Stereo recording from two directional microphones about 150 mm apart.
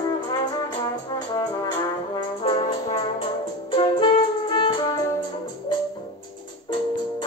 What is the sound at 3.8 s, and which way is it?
Music, 35° left (ahead or behind).